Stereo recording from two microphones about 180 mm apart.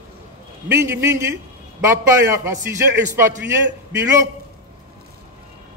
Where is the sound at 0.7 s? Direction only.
15° right (ahead or behind).